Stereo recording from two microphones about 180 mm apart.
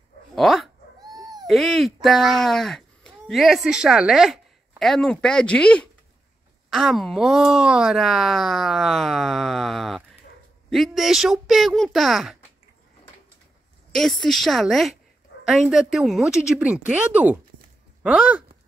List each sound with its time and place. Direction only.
0.4 s speech: centre (ahead or behind)
1.1 s owl: 20° right (ahead or behind)
1.5 s speech: centre (ahead or behind)
13.9 s speech: centre (ahead or behind)